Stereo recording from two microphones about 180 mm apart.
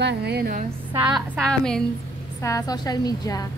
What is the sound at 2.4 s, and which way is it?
A woman's voice, 20° left (ahead or behind).